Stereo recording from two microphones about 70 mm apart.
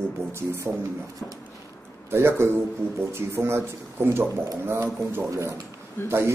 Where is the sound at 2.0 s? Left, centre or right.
Right.